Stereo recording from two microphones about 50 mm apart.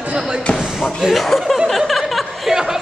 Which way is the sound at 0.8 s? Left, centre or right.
Centre.